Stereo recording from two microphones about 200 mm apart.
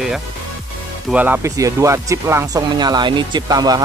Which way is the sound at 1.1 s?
10° right (ahead or behind).